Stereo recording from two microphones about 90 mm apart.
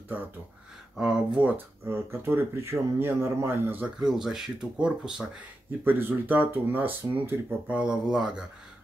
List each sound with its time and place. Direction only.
0.1 s speech: 20° right (ahead or behind)
0.9 s speech: 10° right (ahead or behind)
1.9 s speech: 30° right (ahead or behind)
4.0 s speech: 5° right (ahead or behind)
5.9 s speech: 20° right (ahead or behind)